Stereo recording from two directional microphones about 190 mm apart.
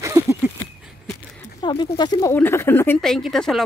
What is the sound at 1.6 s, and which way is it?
Speech, 25° left (ahead or behind).